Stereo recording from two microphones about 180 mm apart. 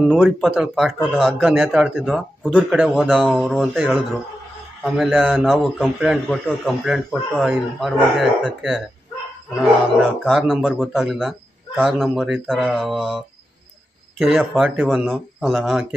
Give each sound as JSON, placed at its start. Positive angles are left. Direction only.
{"t": 0.0, "sound": "a man's voice", "side_deg": -5}